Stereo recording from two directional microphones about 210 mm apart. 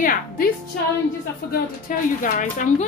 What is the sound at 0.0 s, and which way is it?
Music, 40° left (ahead or behind).